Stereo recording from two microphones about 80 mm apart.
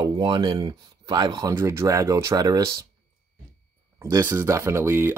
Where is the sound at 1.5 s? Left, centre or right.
Right.